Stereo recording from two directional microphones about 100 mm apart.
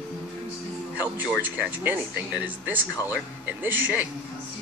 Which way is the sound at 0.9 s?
15° right (ahead or behind).